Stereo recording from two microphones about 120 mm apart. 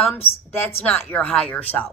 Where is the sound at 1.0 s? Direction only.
10° left (ahead or behind).